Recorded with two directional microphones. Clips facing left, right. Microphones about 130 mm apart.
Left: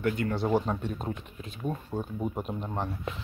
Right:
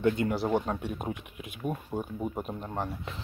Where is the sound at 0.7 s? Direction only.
10° right (ahead or behind).